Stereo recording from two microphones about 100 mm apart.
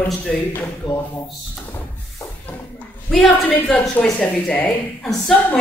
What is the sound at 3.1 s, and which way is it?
A woman's voice, 10° left (ahead or behind).